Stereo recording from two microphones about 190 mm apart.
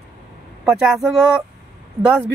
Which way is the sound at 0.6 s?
Centre (ahead or behind).